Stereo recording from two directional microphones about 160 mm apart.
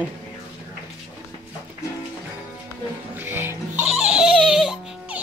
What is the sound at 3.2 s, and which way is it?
Music, 15° right (ahead or behind).